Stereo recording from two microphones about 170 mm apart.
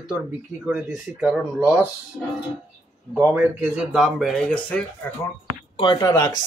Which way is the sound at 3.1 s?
5° right (ahead or behind).